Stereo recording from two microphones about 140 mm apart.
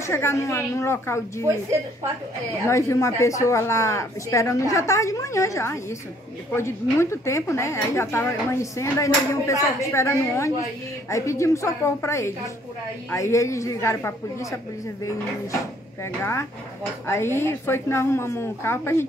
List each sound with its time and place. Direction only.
0.0 s a woman's voice: 20° left (ahead or behind)
2.6 s a woman's voice: 20° left (ahead or behind)
16.0 s a woman's voice: 20° left (ahead or behind)